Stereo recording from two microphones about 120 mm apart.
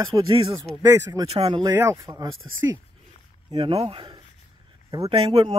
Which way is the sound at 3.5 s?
55° right (ahead or behind).